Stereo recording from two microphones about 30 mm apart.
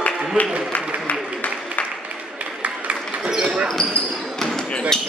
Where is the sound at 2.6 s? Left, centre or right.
Right.